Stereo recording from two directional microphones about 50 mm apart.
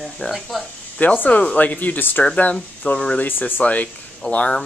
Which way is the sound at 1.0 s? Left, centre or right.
Left.